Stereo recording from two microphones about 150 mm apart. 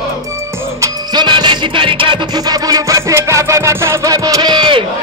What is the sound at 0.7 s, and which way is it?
Music, 25° right (ahead or behind).